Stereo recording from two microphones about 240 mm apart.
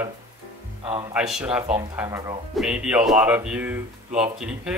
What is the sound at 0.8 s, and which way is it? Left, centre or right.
Speech, right.